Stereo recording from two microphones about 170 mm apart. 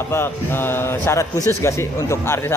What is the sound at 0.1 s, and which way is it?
A man's voice, 15° left (ahead or behind).